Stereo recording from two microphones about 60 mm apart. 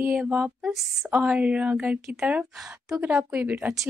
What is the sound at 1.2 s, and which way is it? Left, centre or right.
Speech, right.